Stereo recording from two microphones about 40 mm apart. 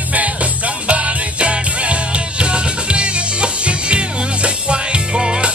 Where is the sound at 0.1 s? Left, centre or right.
Right; by 5.5 s centre.